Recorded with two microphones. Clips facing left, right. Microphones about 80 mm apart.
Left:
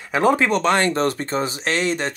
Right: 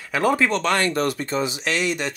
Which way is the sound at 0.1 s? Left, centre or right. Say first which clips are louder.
Left 3 dB; left.